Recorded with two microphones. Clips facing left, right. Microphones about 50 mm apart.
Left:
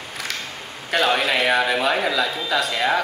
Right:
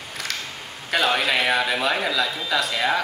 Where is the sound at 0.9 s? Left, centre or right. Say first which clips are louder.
Left 1 dB; centre.